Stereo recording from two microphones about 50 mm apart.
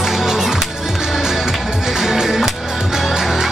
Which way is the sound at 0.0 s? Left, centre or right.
Centre.